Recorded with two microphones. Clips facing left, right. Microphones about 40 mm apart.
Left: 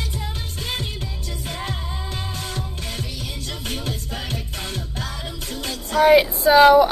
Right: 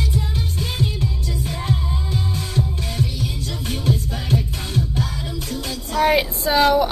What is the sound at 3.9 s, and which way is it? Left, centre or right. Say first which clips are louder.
Music: right 7 dB; left.